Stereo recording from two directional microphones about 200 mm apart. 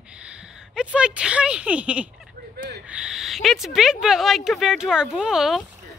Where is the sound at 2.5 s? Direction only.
55° right (ahead or behind).